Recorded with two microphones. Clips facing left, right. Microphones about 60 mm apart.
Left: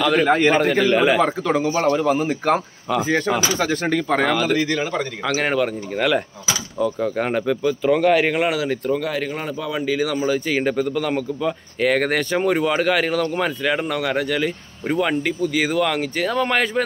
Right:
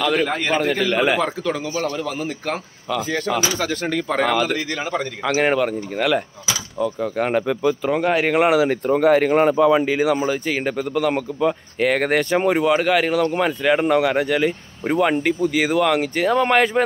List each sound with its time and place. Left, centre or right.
0.0 s speech: centre
1.2 s speech: centre
7.3 s speech: centre; by 9.0 s right
9.0 s a man's voice: right
9.8 s speech: right
10.2 s speech: centre